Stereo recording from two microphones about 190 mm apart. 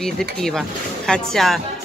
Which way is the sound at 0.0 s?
Centre (ahead or behind).